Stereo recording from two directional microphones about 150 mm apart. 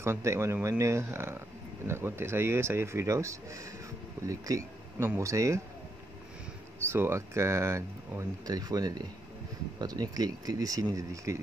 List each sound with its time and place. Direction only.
0.0 s speech: 20° right (ahead or behind)
6.9 s speech: 15° right (ahead or behind)